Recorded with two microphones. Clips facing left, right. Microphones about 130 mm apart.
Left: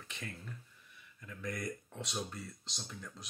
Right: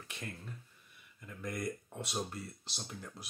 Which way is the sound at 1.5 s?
55° right (ahead or behind).